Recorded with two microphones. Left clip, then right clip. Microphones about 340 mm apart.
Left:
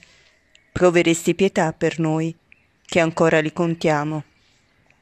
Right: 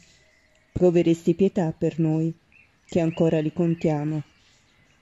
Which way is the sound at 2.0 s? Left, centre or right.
Left.